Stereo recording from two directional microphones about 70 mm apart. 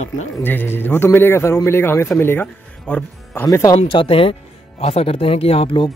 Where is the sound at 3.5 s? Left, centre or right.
Left.